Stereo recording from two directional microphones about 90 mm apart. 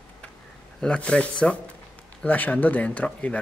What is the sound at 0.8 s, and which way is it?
A man's voice, 10° left (ahead or behind).